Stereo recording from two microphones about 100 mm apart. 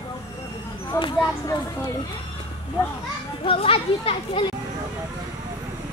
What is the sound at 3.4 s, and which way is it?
Speech, 70° left (ahead or behind).